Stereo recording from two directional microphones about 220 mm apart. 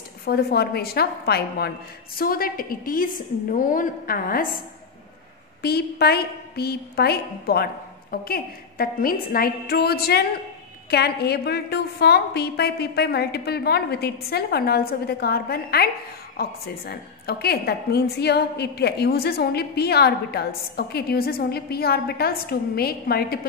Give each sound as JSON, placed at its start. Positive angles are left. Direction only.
{"t": 0.2, "sound": "a woman's voice", "side_deg": 45}
{"t": 5.6, "sound": "a woman's voice", "side_deg": 45}